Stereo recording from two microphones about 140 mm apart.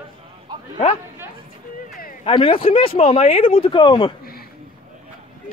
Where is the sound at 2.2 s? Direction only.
40° left (ahead or behind).